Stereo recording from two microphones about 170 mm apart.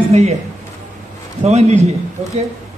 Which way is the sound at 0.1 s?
40° right (ahead or behind).